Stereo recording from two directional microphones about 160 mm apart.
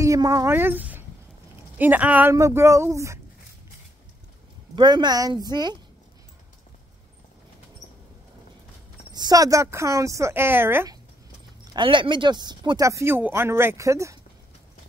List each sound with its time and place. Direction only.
0.0 s speech: 20° right (ahead or behind)
4.7 s speech: 25° right (ahead or behind)
9.1 s speech: 25° right (ahead or behind)
11.6 s speech: 30° right (ahead or behind)